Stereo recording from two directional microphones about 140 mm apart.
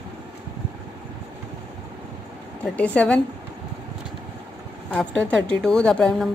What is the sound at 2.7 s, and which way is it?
Speech, 10° left (ahead or behind).